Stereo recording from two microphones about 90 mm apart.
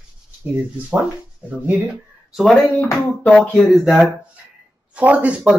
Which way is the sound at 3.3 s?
5° left (ahead or behind).